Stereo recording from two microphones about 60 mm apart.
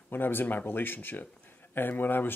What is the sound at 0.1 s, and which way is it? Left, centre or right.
Speech, left.